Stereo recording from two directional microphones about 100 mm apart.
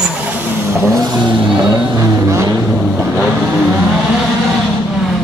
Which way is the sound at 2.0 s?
35° right (ahead or behind).